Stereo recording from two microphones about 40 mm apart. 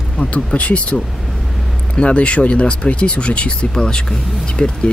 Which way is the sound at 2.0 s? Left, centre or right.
Left.